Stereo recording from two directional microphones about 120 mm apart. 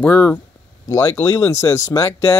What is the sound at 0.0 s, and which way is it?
Speech, 15° left (ahead or behind).